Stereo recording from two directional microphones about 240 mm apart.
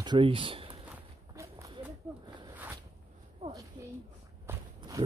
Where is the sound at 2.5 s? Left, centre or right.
Centre.